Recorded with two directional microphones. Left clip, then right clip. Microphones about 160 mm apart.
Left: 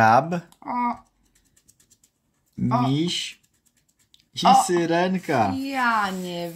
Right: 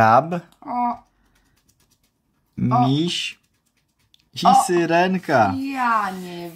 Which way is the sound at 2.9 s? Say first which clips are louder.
Right 3 dB; 20° right (ahead or behind).